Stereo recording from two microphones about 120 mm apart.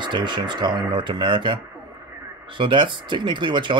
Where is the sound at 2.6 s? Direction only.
45° right (ahead or behind).